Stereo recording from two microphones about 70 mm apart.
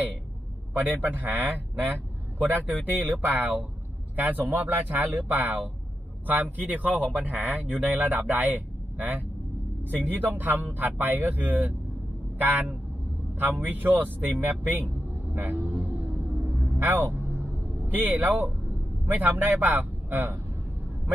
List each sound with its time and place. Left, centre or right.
0.7 s speech: right
2.5 s speech: right
15.3 s music: right
19.0 s speech: right